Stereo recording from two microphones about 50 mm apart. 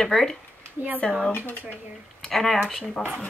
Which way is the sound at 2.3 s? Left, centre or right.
Centre.